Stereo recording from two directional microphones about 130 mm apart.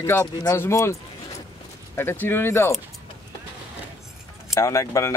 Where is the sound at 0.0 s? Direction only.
20° left (ahead or behind).